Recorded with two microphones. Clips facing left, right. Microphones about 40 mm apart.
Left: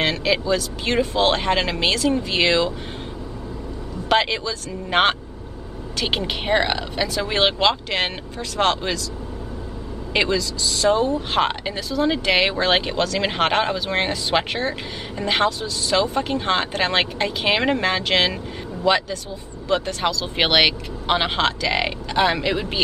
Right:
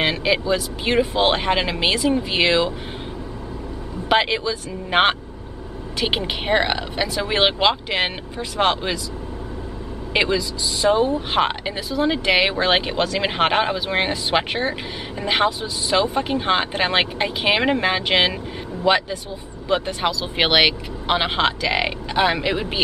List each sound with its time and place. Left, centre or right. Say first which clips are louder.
0.0 s speech: right 1 dB; centre
4.1 s speech: right 1 dB; centre
10.1 s speech: right 1 dB; centre